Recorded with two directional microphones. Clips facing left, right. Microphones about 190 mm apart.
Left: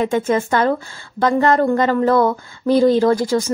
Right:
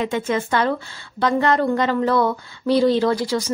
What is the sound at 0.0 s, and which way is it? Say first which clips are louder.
A woman's voice: left 4 dB; 45° left (ahead or behind).